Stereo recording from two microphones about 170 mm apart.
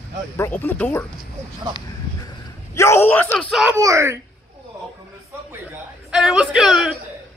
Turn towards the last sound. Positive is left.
turn(degrees=-5)  # may be behind; listen again after turning